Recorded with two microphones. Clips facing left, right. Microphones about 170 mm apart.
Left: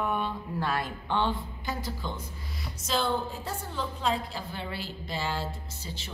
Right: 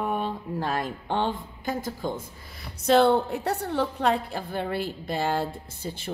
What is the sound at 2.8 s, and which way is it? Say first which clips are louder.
A woman's voice: right 10 dB; 65° right (ahead or behind).